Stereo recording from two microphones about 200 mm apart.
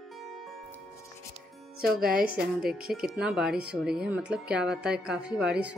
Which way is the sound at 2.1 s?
5° right (ahead or behind).